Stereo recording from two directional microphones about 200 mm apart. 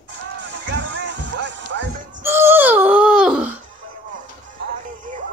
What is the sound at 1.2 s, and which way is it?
Music, 60° right (ahead or behind).